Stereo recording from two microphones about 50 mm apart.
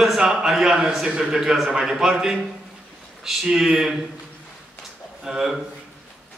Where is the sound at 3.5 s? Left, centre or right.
Centre.